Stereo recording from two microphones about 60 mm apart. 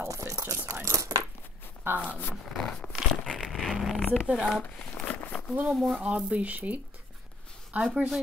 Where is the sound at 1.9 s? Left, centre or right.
Right.